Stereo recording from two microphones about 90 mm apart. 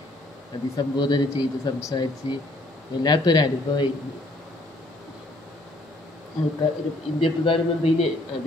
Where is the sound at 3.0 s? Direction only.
55° left (ahead or behind).